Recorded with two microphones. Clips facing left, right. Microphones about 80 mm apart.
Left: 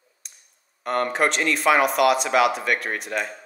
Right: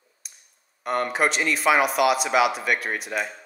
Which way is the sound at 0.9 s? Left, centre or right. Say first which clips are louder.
Left 1 dB; centre.